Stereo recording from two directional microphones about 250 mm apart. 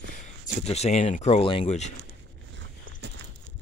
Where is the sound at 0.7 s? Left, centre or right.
Left.